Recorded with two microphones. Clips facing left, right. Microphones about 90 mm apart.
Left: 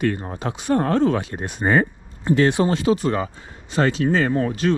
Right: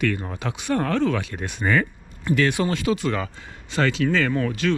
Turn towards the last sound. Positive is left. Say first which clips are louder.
# left 3 dB
turn(degrees=30)  # may be behind; listen again after turning